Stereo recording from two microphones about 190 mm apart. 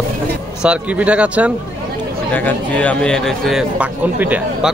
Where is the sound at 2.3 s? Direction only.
5° left (ahead or behind).